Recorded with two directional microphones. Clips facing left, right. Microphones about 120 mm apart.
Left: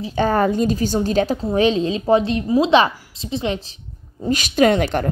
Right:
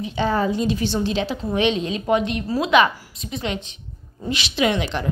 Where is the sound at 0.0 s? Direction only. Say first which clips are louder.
Left 4 dB; 45° left (ahead or behind).